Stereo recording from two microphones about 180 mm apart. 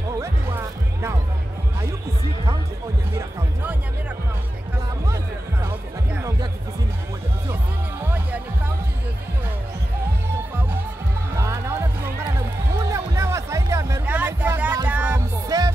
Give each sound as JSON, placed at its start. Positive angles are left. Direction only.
{"t": 5.0, "sound": "music", "side_deg": -15}
{"t": 11.3, "sound": "music", "side_deg": -15}
{"t": 15.4, "sound": "music", "side_deg": -20}